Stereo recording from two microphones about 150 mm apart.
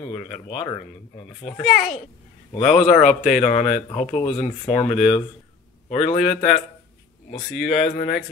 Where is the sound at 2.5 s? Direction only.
40° left (ahead or behind).